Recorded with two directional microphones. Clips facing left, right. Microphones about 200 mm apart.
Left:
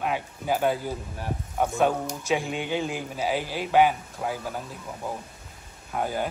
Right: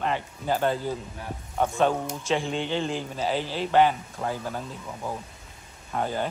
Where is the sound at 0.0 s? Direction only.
10° left (ahead or behind).